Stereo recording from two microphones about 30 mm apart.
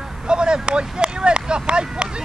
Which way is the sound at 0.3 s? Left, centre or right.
Right.